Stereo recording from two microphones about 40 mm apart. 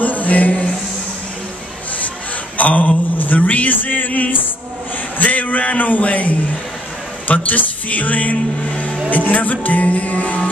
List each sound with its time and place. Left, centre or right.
0.0 s music: left
2.5 s a sound: left
3.3 s speech: left
7.2 s music: left
9.1 s speech: left